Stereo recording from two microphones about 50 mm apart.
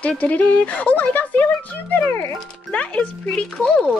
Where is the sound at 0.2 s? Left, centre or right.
Left.